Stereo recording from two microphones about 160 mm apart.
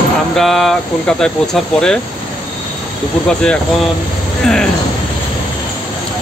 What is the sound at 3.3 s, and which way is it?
Speech, 5° left (ahead or behind).